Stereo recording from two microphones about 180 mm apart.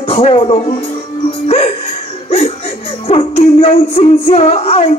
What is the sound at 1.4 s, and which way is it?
Music, 35° left (ahead or behind).